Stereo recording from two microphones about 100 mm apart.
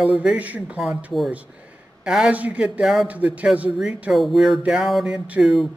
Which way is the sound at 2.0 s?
10° right (ahead or behind).